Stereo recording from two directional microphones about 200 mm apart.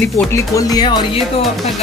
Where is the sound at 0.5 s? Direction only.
20° left (ahead or behind).